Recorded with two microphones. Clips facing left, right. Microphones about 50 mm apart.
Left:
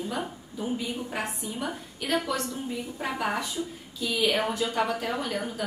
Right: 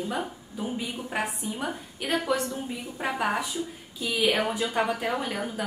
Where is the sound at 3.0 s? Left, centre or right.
Centre.